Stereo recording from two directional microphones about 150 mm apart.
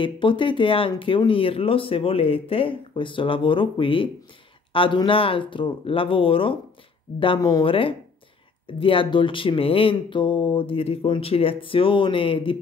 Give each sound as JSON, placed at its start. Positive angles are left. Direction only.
{"t": 0.0, "sound": "speech", "side_deg": 35}